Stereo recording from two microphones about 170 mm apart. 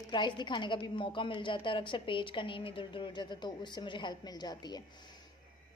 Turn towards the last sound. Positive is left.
turn(degrees=25)  # may be behind; listen again after turning